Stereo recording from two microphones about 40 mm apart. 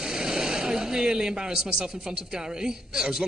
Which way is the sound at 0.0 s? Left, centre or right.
Centre.